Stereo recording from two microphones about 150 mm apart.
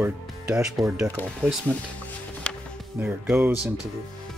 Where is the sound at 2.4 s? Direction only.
5° left (ahead or behind).